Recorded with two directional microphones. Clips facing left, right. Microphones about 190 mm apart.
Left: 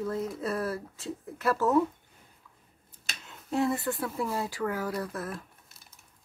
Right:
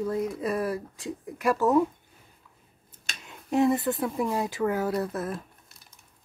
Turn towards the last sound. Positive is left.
turn(degrees=-25)  # may be behind; listen again after turning